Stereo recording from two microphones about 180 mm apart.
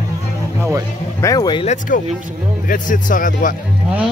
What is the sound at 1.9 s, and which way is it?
Speech, 50° left (ahead or behind).